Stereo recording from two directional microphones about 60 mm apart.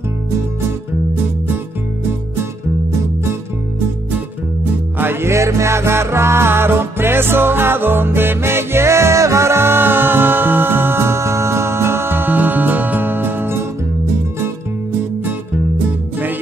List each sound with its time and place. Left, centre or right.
4.9 s music: right